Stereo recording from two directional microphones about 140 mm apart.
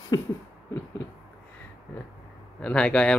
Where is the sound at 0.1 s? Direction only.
30° left (ahead or behind).